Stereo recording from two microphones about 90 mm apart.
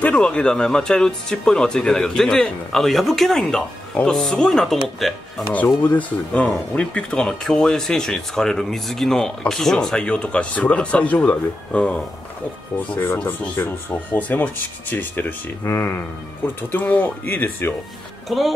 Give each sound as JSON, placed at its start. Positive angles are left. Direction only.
{"t": 0.0, "sound": "speech", "side_deg": 10}
{"t": 5.8, "sound": "speech", "side_deg": 15}
{"t": 13.2, "sound": "speech", "side_deg": 20}
{"t": 15.6, "sound": "speech", "side_deg": 30}
{"t": 16.7, "sound": "speech", "side_deg": 20}
{"t": 18.3, "sound": "speech", "side_deg": 0}